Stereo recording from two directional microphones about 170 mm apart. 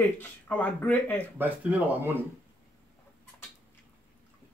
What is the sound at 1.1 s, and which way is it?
Speech, 10° right (ahead or behind).